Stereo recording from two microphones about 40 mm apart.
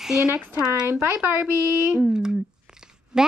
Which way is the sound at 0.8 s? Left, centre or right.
Right.